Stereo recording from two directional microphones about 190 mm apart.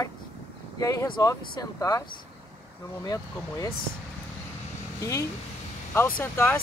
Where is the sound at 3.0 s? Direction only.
20° left (ahead or behind).